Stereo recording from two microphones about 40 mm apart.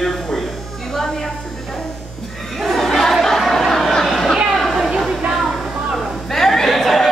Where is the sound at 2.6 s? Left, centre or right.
Centre.